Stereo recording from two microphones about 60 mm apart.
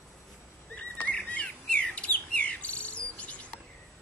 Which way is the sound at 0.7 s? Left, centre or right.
Left.